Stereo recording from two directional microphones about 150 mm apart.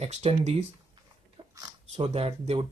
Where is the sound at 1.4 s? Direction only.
40° right (ahead or behind).